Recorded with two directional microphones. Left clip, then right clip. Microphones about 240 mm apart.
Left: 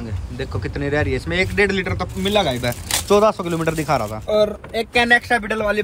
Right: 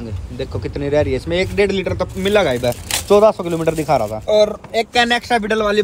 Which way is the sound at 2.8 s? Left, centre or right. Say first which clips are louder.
Right 3 dB; centre.